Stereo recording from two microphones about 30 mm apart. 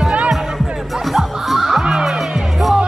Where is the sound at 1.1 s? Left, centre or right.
Centre.